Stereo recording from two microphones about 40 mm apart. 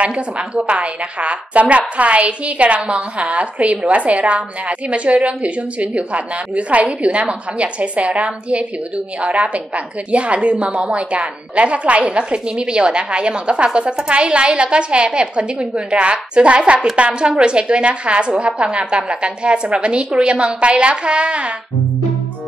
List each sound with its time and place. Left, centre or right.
0.0 s a woman's voice: right